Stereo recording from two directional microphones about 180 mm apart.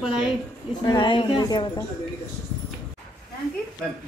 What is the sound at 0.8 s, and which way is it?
A woman's voice, 25° left (ahead or behind).